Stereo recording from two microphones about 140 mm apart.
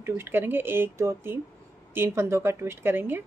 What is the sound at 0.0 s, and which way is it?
Speech, 15° right (ahead or behind).